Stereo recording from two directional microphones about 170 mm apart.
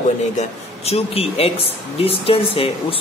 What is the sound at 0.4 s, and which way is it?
Speech, 35° left (ahead or behind).